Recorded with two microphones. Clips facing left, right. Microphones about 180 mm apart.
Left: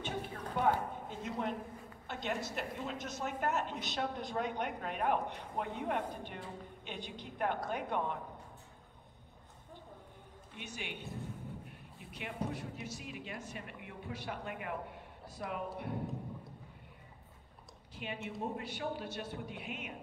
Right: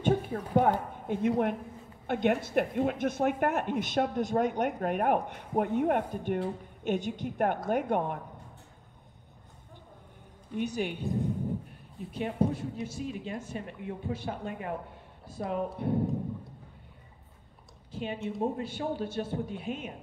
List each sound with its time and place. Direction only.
0.0 s a sound: 50° right (ahead or behind)
2.0 s a woman's voice: 55° right (ahead or behind)
10.5 s a woman's voice: 40° right (ahead or behind)
12.1 s a woman's voice: 35° right (ahead or behind)
17.9 s a woman's voice: 30° right (ahead or behind)